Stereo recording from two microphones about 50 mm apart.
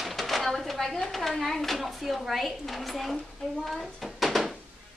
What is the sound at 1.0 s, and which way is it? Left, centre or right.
Speech, centre.